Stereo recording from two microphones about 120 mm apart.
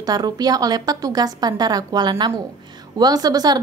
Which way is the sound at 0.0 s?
35° right (ahead or behind).